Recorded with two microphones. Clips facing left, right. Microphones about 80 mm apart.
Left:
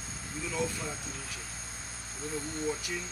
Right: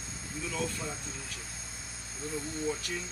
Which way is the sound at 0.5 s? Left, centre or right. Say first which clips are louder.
Left 2 dB; centre.